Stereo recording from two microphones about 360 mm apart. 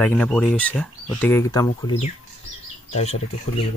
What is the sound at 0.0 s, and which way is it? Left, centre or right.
Speech, centre.